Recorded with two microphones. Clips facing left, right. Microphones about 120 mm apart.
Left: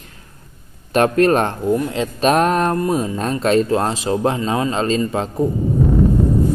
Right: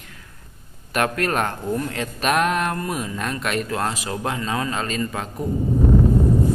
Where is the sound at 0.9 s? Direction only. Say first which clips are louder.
Left 8 dB; 30° left (ahead or behind).